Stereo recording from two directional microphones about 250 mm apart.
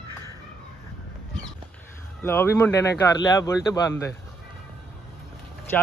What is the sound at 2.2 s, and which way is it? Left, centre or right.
Speech, centre.